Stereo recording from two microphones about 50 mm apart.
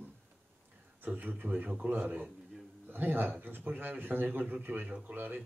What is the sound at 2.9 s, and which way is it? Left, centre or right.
Speech, right.